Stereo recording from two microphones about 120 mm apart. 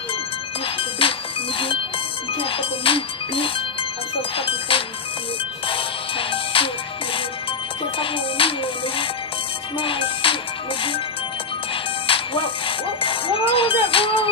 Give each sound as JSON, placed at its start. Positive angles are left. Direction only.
{"t": 0.7, "sound": "music", "side_deg": 50}
{"t": 2.3, "sound": "speech", "side_deg": 50}
{"t": 8.0, "sound": "speech", "side_deg": 50}
{"t": 9.8, "sound": "music", "side_deg": 45}
{"t": 12.1, "sound": "speech", "side_deg": 45}